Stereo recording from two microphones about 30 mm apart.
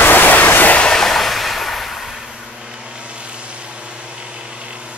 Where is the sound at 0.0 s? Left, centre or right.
Left.